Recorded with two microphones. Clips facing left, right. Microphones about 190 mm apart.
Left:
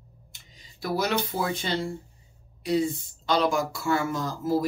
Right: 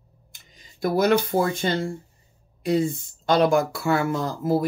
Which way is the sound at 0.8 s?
50° right (ahead or behind).